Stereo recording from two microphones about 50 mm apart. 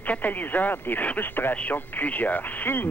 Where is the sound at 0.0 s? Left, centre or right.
Left.